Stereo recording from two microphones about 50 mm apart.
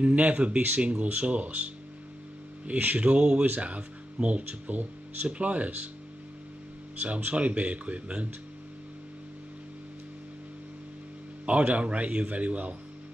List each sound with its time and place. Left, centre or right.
0.0 s speech: right
7.3 s speech: right
11.4 s speech: right